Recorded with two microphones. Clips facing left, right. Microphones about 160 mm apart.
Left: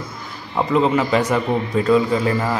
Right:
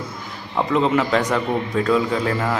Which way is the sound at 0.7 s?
Centre (ahead or behind).